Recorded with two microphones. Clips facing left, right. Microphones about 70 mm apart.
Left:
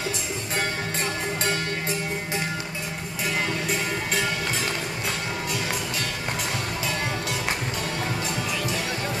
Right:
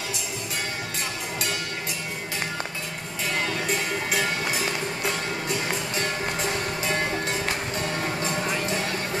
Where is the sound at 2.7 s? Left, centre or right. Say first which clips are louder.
Left 1 dB; centre.